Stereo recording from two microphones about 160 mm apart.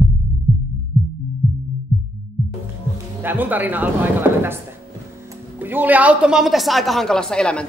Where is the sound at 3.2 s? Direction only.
10° right (ahead or behind).